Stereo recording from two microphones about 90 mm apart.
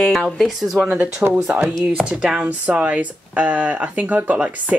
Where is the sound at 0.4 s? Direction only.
5° right (ahead or behind).